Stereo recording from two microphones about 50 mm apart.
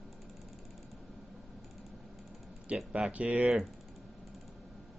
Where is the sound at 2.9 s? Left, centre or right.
Right.